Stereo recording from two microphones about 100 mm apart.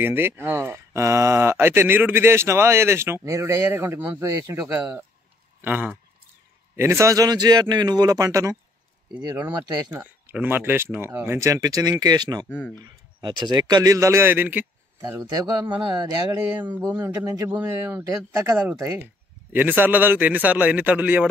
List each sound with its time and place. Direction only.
0.0 s a man's voice: 20° right (ahead or behind)
5.6 s a man's voice: 15° right (ahead or behind)
6.8 s a man's voice: 25° right (ahead or behind)
10.3 s speech: 20° right (ahead or behind); by 12.4 s 40° right (ahead or behind)
12.4 s speech: 20° left (ahead or behind)
12.8 s speech: 50° right (ahead or behind)
13.9 s speech: 30° right (ahead or behind)
15.0 s speech: 40° right (ahead or behind)
16.6 s a man's voice: 15° right (ahead or behind)